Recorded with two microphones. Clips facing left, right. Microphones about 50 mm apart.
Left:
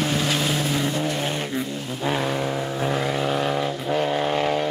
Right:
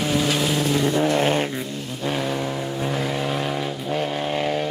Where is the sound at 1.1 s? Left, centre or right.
Right.